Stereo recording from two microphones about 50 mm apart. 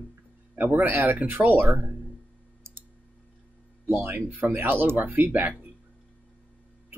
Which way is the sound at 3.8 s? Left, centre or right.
Right.